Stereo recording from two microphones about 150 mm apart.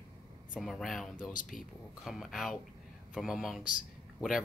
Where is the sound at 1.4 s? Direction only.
65° left (ahead or behind).